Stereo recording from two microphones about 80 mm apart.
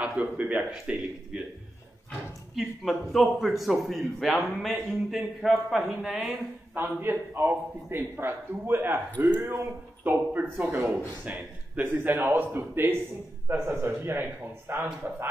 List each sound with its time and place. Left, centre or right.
0.0 s a man's voice: centre
2.5 s a man's voice: centre
7.0 s a man's voice: right